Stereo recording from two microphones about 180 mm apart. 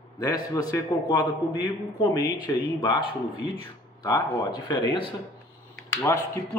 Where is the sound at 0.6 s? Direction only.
20° left (ahead or behind).